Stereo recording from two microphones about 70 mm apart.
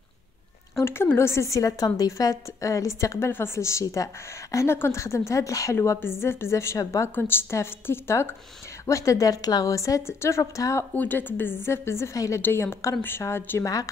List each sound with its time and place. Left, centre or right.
0.7 s a woman's voice: left
4.6 s a woman's voice: left
6.2 s a woman's voice: left
7.2 s a woman's voice: left
8.8 s a woman's voice: left
11.0 s a woman's voice: left
12.4 s a woman's voice: left